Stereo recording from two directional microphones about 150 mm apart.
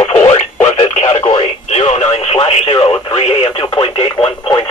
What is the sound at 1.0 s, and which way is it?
Radio, 30° left (ahead or behind).